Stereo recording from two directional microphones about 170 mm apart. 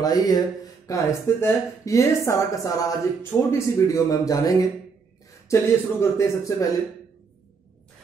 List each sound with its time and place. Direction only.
0.0 s speech: 20° left (ahead or behind)